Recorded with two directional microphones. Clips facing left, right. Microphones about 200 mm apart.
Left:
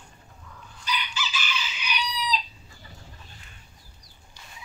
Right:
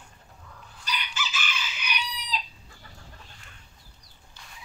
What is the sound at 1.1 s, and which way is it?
Chicken, 50° right (ahead or behind).